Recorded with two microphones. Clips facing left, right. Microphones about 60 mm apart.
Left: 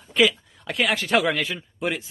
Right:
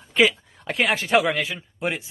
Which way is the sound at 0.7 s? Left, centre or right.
Right.